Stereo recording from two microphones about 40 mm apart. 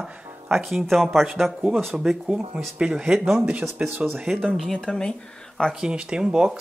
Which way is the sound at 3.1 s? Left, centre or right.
Centre.